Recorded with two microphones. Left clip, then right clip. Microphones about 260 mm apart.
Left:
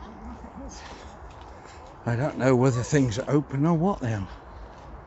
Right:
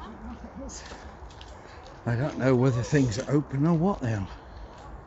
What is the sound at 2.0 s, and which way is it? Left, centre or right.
Speech, centre.